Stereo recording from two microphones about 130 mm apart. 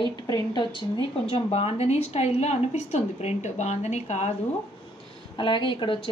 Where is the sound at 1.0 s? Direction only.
45° left (ahead or behind).